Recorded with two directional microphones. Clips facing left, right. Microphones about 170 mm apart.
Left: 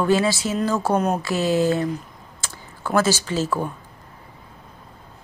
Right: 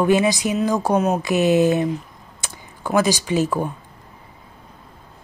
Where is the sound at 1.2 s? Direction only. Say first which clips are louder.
Right 4 dB; 20° right (ahead or behind).